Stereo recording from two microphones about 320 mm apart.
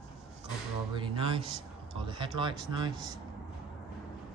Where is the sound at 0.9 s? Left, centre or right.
Centre.